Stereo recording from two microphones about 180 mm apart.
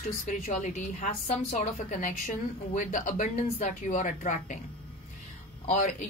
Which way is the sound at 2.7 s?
45° left (ahead or behind).